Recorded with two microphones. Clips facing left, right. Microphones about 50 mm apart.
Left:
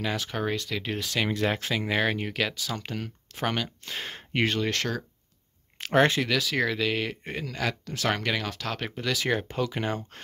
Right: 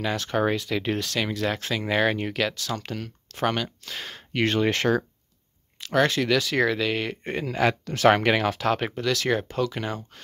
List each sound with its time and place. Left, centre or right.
0.3 s speech: centre
0.9 s speech: centre
1.9 s speech: centre
3.9 s speech: centre
4.6 s speech: right
5.8 s speech: left
6.2 s speech: centre
7.4 s speech: right
7.8 s speech: right; by 8.9 s centre
8.9 s speech: centre